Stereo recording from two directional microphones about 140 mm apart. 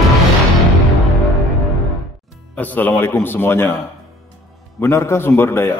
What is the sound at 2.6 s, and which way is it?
A man's voice, 10° left (ahead or behind).